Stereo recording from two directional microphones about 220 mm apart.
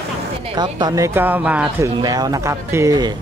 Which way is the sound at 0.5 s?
20° right (ahead or behind).